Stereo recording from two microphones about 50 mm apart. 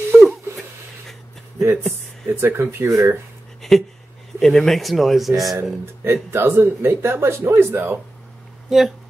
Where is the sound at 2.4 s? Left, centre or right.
Right.